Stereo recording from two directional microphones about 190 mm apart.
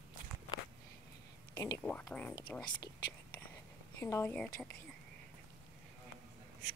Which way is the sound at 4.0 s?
15° left (ahead or behind).